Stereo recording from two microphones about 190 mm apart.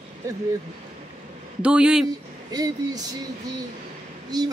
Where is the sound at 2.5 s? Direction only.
20° right (ahead or behind).